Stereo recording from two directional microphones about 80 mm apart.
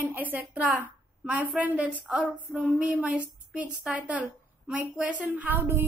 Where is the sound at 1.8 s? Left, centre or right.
Centre; by 5.8 s right.